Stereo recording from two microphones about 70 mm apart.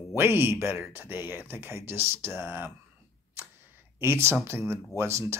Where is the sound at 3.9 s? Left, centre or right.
Right.